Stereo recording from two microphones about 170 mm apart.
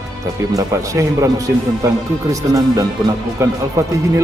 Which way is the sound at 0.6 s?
20° right (ahead or behind).